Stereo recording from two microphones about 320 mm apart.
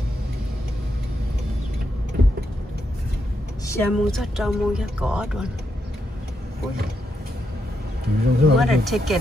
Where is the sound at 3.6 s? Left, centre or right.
Centre.